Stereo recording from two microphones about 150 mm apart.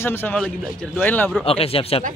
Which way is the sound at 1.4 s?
40° left (ahead or behind).